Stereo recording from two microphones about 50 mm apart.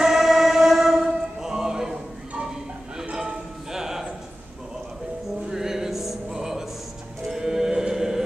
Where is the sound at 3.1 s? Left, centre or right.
Right.